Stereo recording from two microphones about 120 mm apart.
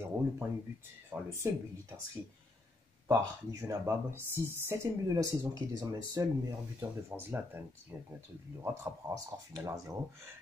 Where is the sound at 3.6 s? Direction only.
20° right (ahead or behind).